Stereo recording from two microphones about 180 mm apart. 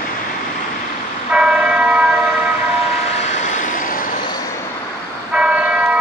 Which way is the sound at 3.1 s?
40° left (ahead or behind).